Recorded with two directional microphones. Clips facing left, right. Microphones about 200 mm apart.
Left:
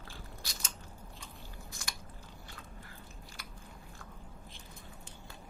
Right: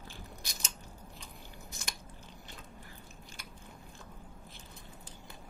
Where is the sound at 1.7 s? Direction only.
20° right (ahead or behind).